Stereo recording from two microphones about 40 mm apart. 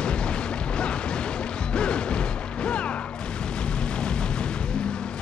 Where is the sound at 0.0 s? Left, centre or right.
Left.